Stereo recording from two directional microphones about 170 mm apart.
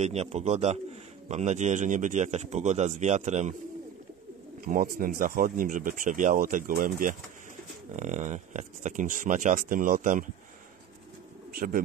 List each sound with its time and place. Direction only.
0.0 s speech: 40° right (ahead or behind)
4.6 s speech: 55° right (ahead or behind)
7.9 s speech: 45° right (ahead or behind)
11.5 s speech: 55° right (ahead or behind)